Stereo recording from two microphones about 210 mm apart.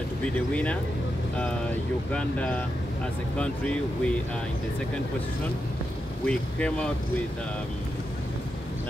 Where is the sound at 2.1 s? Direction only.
5° left (ahead or behind).